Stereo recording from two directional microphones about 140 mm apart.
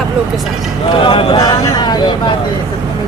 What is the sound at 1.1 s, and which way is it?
Speech, 35° left (ahead or behind).